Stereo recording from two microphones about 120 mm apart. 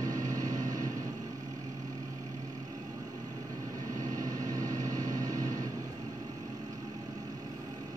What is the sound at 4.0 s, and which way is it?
Vehicle, 30° right (ahead or behind).